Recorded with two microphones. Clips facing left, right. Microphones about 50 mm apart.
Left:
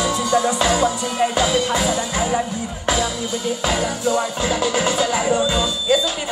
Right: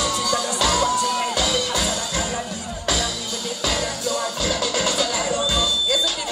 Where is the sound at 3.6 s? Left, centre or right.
Left.